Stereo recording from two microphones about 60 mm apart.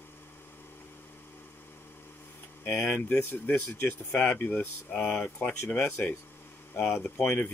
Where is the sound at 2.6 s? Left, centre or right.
Left.